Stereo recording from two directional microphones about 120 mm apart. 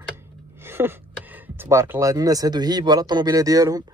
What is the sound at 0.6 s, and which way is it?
Speech, 20° right (ahead or behind).